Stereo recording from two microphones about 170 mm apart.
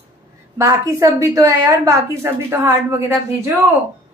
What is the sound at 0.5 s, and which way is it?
A woman's voice, 15° right (ahead or behind).